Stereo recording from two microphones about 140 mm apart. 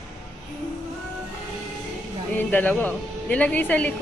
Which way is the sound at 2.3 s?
10° left (ahead or behind).